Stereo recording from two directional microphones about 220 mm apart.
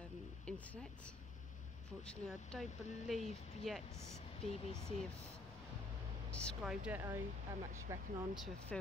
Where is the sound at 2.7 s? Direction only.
30° left (ahead or behind).